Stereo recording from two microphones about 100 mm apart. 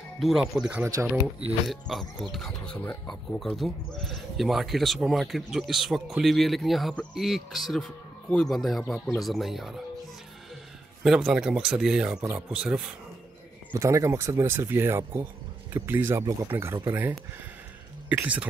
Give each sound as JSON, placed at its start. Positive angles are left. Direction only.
{"t": 0.2, "sound": "speech", "side_deg": -5}
{"t": 11.1, "sound": "speech", "side_deg": -5}
{"t": 13.7, "sound": "speech", "side_deg": -30}
{"t": 18.0, "sound": "speech", "side_deg": -15}